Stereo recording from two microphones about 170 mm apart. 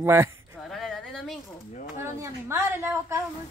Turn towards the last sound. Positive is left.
turn(degrees=-15)  # may be behind; listen again after turning